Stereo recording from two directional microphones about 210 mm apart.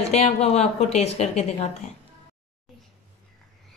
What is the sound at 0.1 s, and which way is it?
Speech, 30° left (ahead or behind).